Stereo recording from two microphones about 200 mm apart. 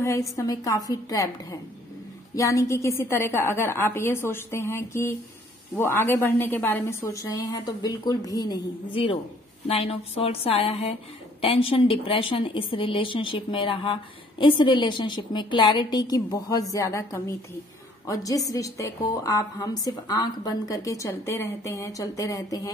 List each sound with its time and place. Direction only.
0.4 s a woman's voice: 15° left (ahead or behind)
2.3 s a woman's voice: 15° left (ahead or behind)